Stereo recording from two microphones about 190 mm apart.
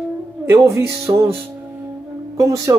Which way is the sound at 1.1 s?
20° right (ahead or behind).